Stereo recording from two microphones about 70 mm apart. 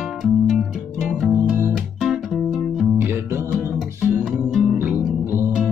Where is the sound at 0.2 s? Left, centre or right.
Centre.